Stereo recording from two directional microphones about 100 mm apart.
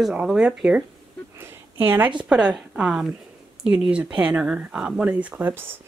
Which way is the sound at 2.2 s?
5° right (ahead or behind).